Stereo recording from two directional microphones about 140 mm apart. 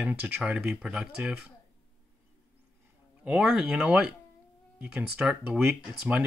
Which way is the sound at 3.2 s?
5° right (ahead or behind).